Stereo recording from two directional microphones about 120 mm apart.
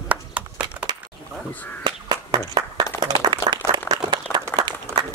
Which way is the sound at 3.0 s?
40° right (ahead or behind).